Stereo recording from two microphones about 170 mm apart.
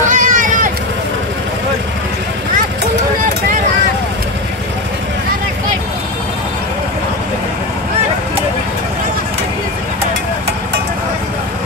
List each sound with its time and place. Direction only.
0.0 s vehicle: 50° right (ahead or behind)